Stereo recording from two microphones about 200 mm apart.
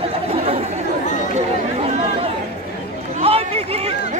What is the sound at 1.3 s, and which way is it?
Chatter, 30° right (ahead or behind).